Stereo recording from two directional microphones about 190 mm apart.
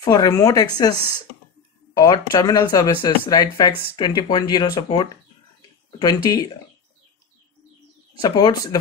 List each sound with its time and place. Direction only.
0.0 s speech: 20° left (ahead or behind)
2.0 s speech: 20° left (ahead or behind)
8.2 s speech: 20° left (ahead or behind)